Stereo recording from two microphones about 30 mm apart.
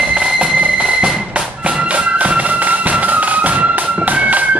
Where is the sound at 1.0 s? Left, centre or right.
Right.